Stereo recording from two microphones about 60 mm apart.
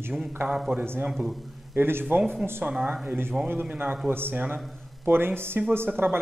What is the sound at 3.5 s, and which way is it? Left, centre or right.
Speech, right.